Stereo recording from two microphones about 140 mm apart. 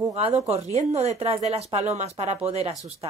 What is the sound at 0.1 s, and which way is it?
Speech, 50° right (ahead or behind).